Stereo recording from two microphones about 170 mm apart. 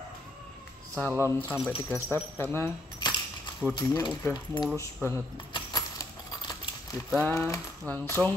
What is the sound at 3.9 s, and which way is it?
Speech, 20° left (ahead or behind).